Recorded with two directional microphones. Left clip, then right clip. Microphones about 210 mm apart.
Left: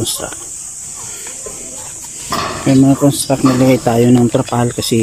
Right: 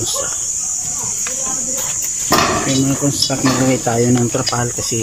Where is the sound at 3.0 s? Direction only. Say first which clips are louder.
Left 4 dB; 15° left (ahead or behind).